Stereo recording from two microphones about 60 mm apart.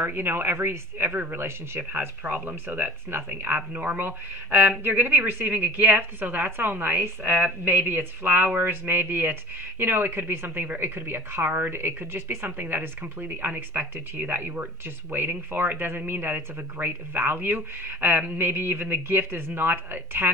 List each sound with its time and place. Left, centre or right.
0.0 s speech: right